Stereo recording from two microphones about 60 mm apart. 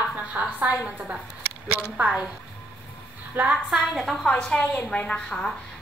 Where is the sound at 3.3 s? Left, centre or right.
Right.